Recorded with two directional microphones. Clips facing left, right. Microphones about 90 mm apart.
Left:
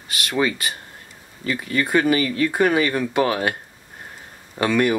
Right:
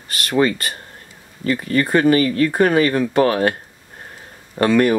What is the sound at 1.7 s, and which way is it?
Speech, 40° right (ahead or behind).